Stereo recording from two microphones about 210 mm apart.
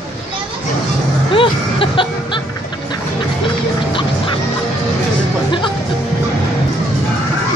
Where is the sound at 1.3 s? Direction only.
25° left (ahead or behind).